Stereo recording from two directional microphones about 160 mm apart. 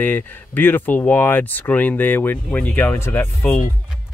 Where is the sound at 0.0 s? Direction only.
10° left (ahead or behind).